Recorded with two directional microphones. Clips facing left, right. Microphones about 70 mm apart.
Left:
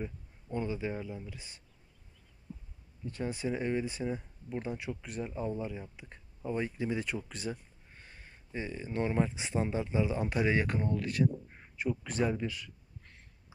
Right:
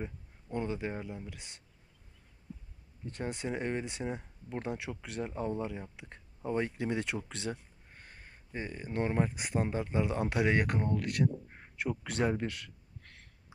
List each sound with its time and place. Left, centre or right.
0.0 s speech: right
3.1 s speech: right
5.3 s speech: right
6.0 s speech: right
7.9 s a sound: right
8.5 s speech: right
11.7 s quack: right